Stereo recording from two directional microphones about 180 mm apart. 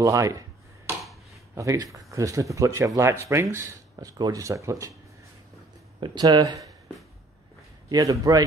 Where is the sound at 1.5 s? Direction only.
15° right (ahead or behind).